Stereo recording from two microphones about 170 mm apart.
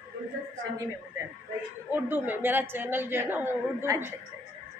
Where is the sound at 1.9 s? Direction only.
10° right (ahead or behind).